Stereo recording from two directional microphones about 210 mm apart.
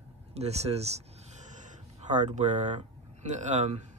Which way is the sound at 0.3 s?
30° right (ahead or behind).